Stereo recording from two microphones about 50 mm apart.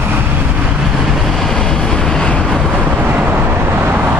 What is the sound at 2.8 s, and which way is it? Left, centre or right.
Vehicle, right.